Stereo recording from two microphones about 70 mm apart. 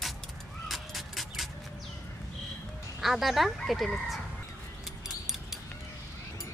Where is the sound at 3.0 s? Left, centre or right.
Centre.